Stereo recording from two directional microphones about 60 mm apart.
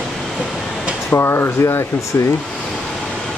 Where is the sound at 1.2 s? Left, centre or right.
Left.